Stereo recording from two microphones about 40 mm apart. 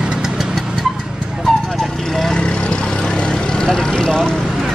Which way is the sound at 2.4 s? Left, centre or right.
Left.